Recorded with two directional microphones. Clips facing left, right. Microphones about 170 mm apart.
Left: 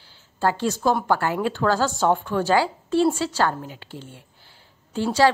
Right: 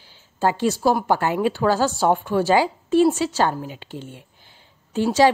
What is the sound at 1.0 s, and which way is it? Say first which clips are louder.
A woman's voice: right 2 dB; 15° right (ahead or behind).